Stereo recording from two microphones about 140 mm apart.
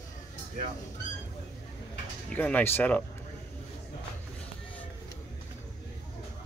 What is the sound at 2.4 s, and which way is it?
Speech, 15° left (ahead or behind).